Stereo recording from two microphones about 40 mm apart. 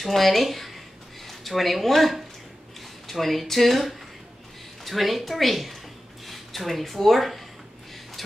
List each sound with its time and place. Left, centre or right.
0.0 s a woman's voice: centre